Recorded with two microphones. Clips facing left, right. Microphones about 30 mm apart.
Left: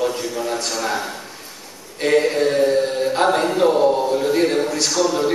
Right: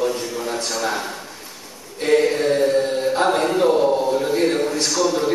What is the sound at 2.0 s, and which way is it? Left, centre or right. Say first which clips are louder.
Chant: even; centre.